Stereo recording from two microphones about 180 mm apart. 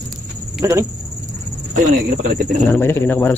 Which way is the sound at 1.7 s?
40° right (ahead or behind).